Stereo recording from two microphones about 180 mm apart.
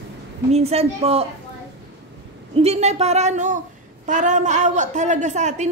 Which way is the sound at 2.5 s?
35° right (ahead or behind).